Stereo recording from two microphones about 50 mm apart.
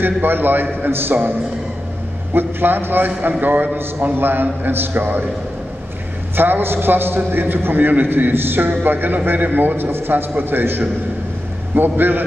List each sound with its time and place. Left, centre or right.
0.0 s a man's voice: right
2.3 s a man's voice: right
6.3 s a man's voice: right